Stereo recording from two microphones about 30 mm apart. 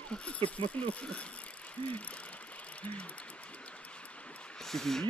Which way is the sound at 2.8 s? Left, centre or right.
Left.